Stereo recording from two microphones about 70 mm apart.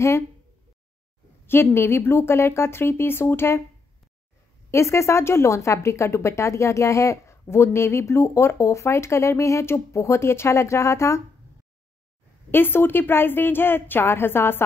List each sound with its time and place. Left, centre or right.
1.4 s speech: left
4.6 s speech: left
12.4 s speech: left